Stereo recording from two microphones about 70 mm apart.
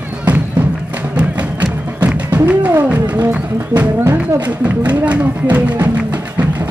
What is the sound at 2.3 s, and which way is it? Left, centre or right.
Music, right.